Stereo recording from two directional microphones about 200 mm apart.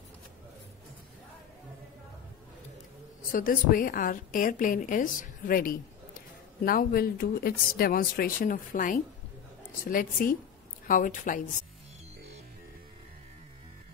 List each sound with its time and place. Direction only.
3.3 s a woman's voice: 45° left (ahead or behind)